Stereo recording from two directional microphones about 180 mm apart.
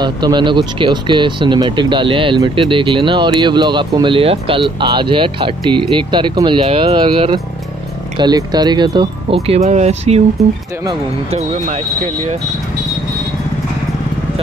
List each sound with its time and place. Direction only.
0.0 s speech: 25° right (ahead or behind)
11.3 s speech: 35° right (ahead or behind)